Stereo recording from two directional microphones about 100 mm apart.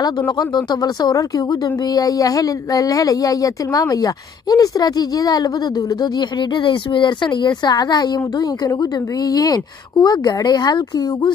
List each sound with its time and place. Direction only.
0.4 s speech: 45° left (ahead or behind)
6.1 s speech: 50° left (ahead or behind)